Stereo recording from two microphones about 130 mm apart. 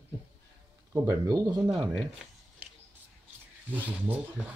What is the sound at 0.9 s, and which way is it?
Speech, 25° right (ahead or behind).